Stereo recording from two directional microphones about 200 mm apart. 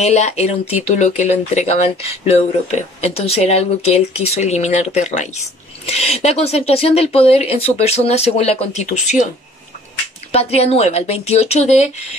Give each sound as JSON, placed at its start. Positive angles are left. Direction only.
{"t": 0.0, "sound": "speech", "side_deg": 35}
{"t": 10.3, "sound": "speech", "side_deg": 30}